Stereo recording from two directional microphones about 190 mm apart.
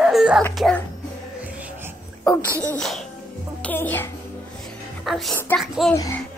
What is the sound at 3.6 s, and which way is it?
A child's voice, 10° left (ahead or behind).